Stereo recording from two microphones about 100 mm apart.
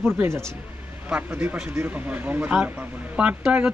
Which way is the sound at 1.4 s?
10° right (ahead or behind).